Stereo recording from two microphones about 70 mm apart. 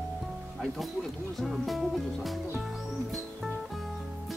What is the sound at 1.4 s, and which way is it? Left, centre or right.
Speech, centre.